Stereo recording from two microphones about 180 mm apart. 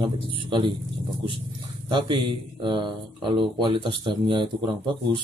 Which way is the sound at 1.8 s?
25° right (ahead or behind).